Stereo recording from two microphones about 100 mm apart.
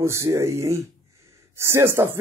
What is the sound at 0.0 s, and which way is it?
Speech, 30° right (ahead or behind).